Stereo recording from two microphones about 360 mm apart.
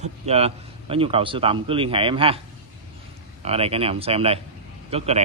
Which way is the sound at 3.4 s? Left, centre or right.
Centre.